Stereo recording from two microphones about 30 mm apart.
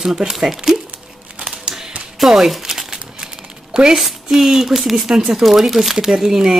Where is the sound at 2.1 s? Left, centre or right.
Centre.